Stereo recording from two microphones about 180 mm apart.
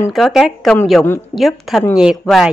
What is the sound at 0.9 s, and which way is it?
Speech, 10° left (ahead or behind).